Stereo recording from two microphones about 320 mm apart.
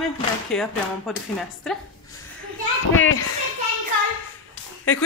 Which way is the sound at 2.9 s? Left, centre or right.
Left.